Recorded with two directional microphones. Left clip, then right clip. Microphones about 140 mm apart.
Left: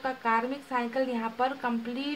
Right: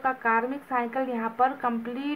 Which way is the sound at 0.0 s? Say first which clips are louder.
Right 3 dB; 20° right (ahead or behind).